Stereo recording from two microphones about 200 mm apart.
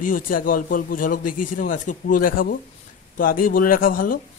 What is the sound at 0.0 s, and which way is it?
Speech, 45° left (ahead or behind).